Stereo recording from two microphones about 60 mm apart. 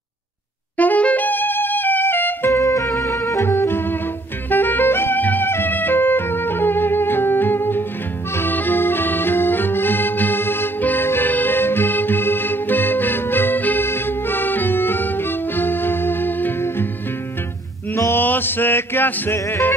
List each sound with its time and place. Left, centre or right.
0.7 s music: left
2.5 s music: left
8.4 s accordion: left
13.8 s music: left
17.9 s music: left
18.2 s music: left